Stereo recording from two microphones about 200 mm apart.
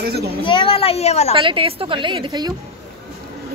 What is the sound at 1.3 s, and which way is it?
A woman's voice, 25° right (ahead or behind).